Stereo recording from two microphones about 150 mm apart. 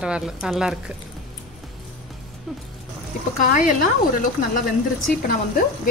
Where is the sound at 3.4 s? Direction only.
60° left (ahead or behind).